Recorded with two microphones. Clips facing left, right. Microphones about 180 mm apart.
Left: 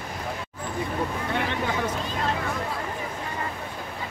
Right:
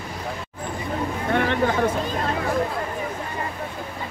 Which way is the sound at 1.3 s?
55° right (ahead or behind).